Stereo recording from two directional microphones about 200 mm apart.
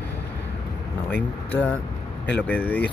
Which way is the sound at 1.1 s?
10° left (ahead or behind).